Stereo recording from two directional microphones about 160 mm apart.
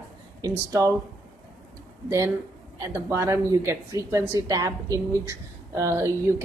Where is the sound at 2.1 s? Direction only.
20° right (ahead or behind).